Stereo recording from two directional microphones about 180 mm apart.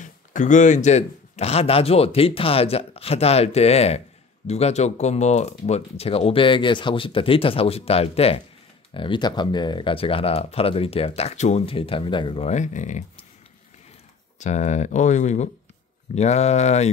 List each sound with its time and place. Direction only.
0.0 s speech: 45° left (ahead or behind)
14.4 s speech: 40° left (ahead or behind)